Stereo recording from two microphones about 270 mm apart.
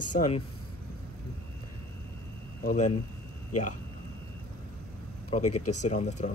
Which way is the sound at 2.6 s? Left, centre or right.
Left.